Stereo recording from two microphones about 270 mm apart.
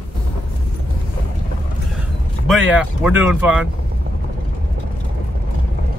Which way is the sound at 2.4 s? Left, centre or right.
Centre.